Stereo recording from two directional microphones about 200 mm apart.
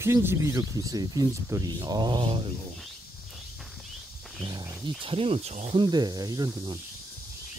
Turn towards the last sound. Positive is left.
turn(degrees=-20)  # may be behind; listen again after turning